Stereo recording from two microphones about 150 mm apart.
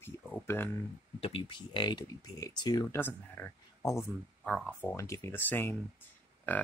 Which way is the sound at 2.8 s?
15° left (ahead or behind).